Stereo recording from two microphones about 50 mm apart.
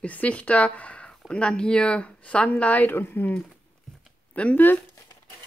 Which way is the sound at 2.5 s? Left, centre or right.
Left.